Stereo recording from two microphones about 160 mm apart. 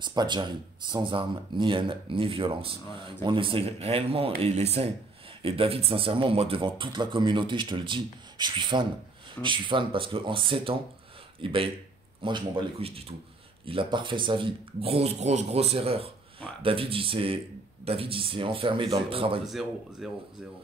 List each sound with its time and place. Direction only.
0.0 s speech: 25° right (ahead or behind)
19.4 s speech: centre (ahead or behind)